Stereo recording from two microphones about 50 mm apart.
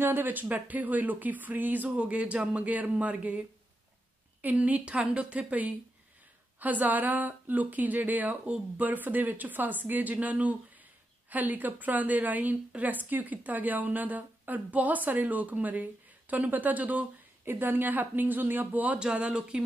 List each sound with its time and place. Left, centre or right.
0.0 s a woman's voice: right
17.5 s a woman's voice: right
18.9 s speech: right